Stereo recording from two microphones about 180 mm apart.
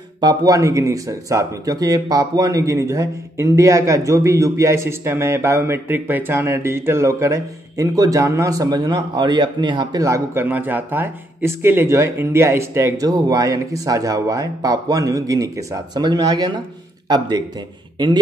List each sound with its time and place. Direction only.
0.2 s speech: 20° right (ahead or behind)